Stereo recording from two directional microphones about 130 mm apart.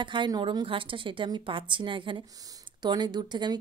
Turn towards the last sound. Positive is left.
turn(degrees=-35)  # may be behind; listen again after turning